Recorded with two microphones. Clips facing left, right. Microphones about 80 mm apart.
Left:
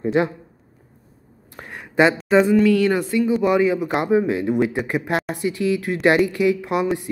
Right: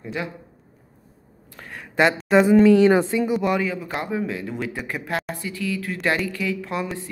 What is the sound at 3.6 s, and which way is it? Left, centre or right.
Speech, centre.